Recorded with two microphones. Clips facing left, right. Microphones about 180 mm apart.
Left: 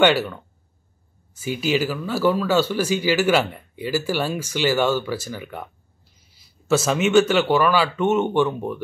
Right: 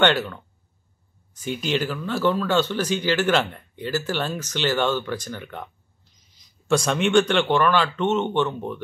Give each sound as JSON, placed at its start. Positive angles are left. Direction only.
{"t": 0.0, "sound": "speech", "side_deg": 10}